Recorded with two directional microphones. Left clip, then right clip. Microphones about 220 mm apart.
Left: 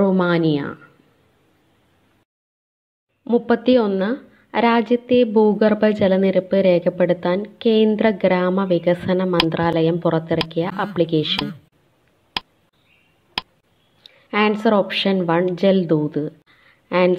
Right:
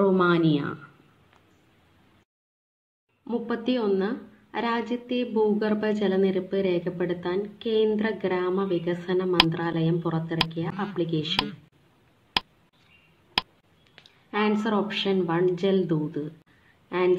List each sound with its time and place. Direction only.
0.0 s a woman's voice: 25° left (ahead or behind)
3.3 s a woman's voice: 30° left (ahead or behind)
12.4 s a sound: centre (ahead or behind)
14.0 s a woman's voice: 30° left (ahead or behind)